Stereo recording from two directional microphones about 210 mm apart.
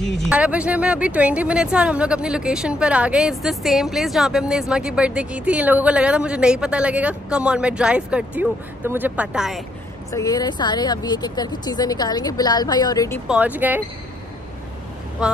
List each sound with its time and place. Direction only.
0.3 s speech: 5° right (ahead or behind)
10.1 s speech: 15° left (ahead or behind)
13.3 s speech: 5° right (ahead or behind)
15.2 s speech: 5° right (ahead or behind)